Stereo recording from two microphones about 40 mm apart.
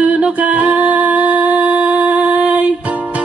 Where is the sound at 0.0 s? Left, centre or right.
Right.